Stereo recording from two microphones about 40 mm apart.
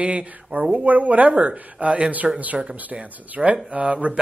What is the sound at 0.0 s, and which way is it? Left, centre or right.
Speech, right.